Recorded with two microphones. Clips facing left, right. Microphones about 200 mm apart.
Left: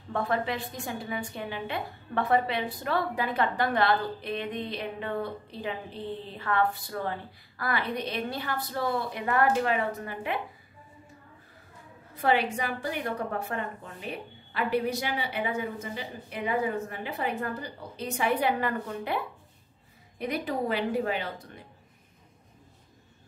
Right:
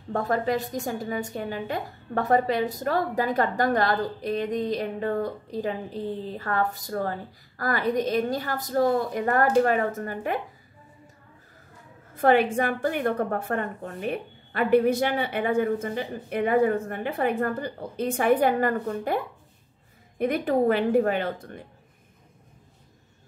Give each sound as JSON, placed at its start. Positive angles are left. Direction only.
{"t": 0.1, "sound": "a woman's voice", "side_deg": -40}
{"t": 12.1, "sound": "a woman's voice", "side_deg": -50}